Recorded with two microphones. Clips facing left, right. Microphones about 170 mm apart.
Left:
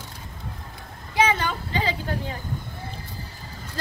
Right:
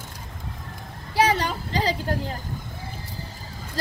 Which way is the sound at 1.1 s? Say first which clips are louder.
Right 1 dB; 35° right (ahead or behind).